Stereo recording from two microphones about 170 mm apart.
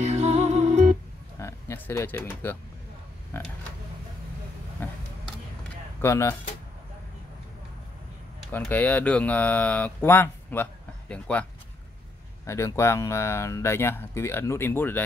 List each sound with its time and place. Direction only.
0.0 s music: 40° right (ahead or behind)
1.4 s a sound: 15° left (ahead or behind)
3.3 s speech: 15° left (ahead or behind)
4.8 s a sound: 10° left (ahead or behind)
5.9 s speech: 15° left (ahead or behind)
8.5 s speech: 10° left (ahead or behind)
12.4 s speech: 15° left (ahead or behind)